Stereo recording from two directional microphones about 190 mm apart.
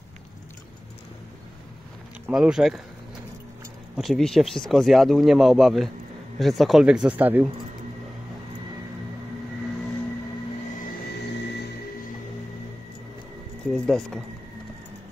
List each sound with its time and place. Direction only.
2.3 s speech: 5° right (ahead or behind)
3.9 s speech: centre (ahead or behind)
10.9 s a sound: 60° left (ahead or behind)
13.7 s speech: 5° left (ahead or behind)